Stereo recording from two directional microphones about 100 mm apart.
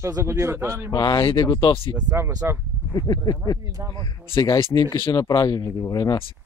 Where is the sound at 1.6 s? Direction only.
65° left (ahead or behind).